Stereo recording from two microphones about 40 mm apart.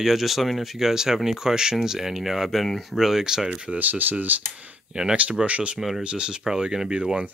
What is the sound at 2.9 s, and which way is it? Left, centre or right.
Speech, centre.